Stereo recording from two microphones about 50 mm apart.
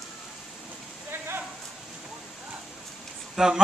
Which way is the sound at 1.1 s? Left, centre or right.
Right.